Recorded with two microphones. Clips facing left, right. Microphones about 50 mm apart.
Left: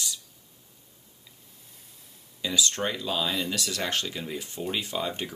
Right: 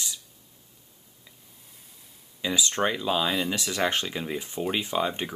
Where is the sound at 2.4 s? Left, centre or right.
Right.